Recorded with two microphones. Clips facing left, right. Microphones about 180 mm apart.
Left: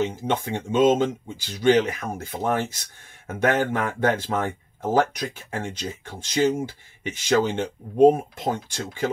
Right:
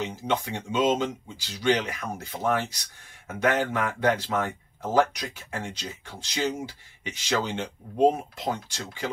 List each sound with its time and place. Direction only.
0.1 s speech: 50° left (ahead or behind)